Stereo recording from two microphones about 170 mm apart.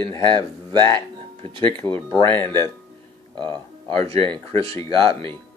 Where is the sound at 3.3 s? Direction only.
25° right (ahead or behind).